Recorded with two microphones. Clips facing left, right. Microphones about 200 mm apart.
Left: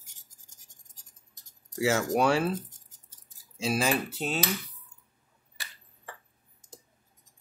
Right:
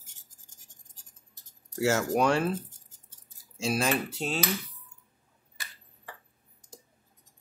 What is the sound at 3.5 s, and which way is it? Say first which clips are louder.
Speech: even; centre (ahead or behind).